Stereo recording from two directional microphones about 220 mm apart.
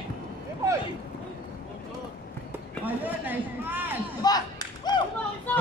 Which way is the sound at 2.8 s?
10° right (ahead or behind).